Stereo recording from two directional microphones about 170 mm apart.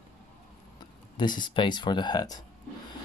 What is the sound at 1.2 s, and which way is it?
Speech, 25° left (ahead or behind).